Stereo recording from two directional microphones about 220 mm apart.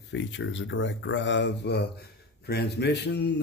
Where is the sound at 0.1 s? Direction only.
60° left (ahead or behind).